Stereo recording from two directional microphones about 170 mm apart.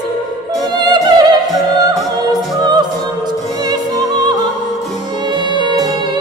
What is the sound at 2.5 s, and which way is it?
Music, 25° right (ahead or behind).